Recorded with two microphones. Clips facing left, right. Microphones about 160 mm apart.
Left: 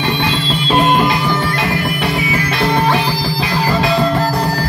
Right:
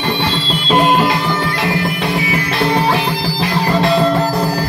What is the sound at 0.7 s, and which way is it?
Music, 15° right (ahead or behind).